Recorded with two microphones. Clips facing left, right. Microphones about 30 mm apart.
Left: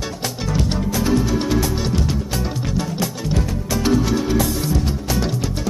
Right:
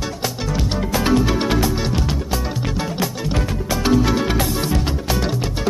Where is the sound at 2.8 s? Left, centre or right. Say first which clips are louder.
Even; right.